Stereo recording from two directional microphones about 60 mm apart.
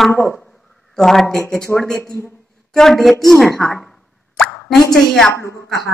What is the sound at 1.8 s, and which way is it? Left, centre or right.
A man's voice, centre.